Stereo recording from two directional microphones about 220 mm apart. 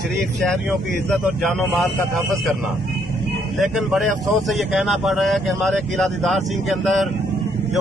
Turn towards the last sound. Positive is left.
turn(degrees=0)  # may be behind; listen again after turning